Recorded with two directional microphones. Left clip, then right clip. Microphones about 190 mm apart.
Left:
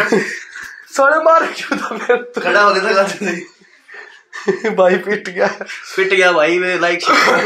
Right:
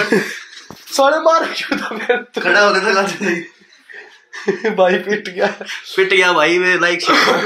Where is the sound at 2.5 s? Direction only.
30° right (ahead or behind).